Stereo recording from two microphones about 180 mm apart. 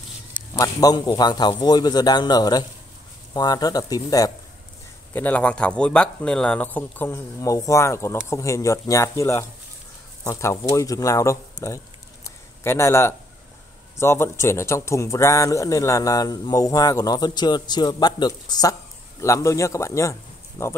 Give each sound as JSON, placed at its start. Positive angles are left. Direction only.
{"t": 0.6, "sound": "speech", "side_deg": 20}
{"t": 5.1, "sound": "a man's voice", "side_deg": 10}
{"t": 11.6, "sound": "a sound", "side_deg": 15}
{"t": 13.9, "sound": "speech", "side_deg": 15}